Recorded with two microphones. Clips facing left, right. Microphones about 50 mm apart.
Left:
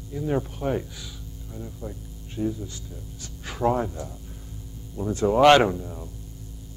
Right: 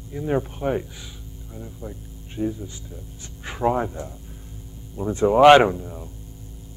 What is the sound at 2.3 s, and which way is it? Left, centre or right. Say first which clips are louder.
Speech: right 1 dB; centre.